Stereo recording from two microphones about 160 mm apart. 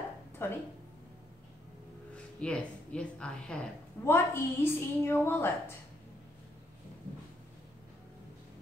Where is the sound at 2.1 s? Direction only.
5° left (ahead or behind).